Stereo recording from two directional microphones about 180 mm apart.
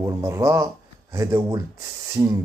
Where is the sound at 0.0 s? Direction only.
15° right (ahead or behind).